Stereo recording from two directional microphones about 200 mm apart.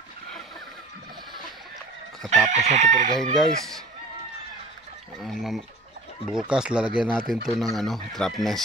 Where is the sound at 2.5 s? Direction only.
35° right (ahead or behind).